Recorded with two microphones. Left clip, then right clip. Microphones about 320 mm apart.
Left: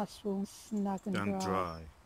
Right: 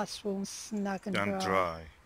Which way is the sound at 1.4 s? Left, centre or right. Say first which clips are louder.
Right 6 dB; centre.